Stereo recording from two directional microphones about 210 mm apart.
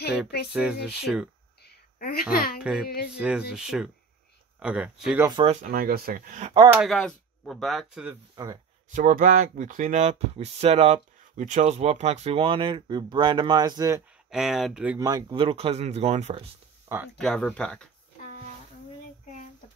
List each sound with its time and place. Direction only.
0.5 s speech: centre (ahead or behind)
1.6 s a sound: 50° left (ahead or behind)
2.8 s music: 50° left (ahead or behind)
3.1 s speech: 5° right (ahead or behind)
5.2 s speech: 20° right (ahead or behind)
5.6 s speech: 45° right (ahead or behind)
6.8 s speech: centre (ahead or behind)
8.9 s speech: 35° right (ahead or behind); by 14.0 s 15° right (ahead or behind)
14.3 s speech: centre (ahead or behind)
15.0 s speech: 15° right (ahead or behind)
16.9 s a sound: 15° right (ahead or behind)
17.2 s speech: 5° left (ahead or behind)